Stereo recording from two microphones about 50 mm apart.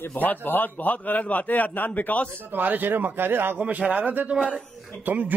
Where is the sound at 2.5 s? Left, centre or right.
Right.